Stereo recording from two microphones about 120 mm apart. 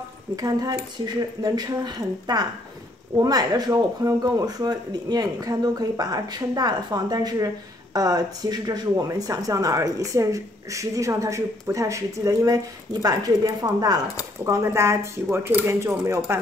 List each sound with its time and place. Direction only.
0.4 s speech: 30° right (ahead or behind)